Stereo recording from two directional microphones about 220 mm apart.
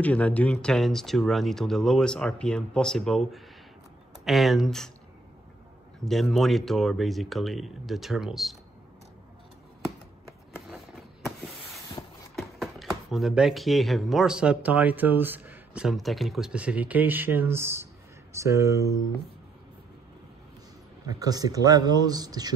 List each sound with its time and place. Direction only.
0.0 s speech: 5° left (ahead or behind)
6.0 s speech: centre (ahead or behind)
10.7 s a sound: centre (ahead or behind)
12.4 s speech: centre (ahead or behind)
21.1 s speech: 15° right (ahead or behind)